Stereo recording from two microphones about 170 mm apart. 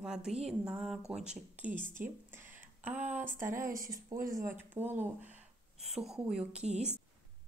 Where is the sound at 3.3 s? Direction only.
50° right (ahead or behind).